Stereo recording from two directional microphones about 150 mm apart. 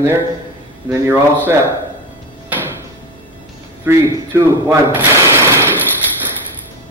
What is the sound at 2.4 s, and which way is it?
Music, 10° right (ahead or behind).